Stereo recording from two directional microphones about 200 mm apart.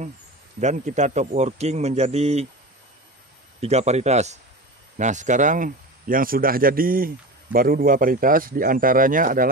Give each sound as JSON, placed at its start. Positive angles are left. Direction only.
{"t": 0.6, "sound": "speech", "side_deg": -35}
{"t": 3.6, "sound": "speech", "side_deg": -35}